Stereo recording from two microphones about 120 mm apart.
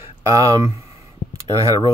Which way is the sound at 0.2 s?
30° right (ahead or behind).